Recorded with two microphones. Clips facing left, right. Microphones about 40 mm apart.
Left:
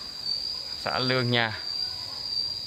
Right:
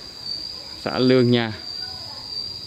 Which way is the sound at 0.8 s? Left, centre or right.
Centre.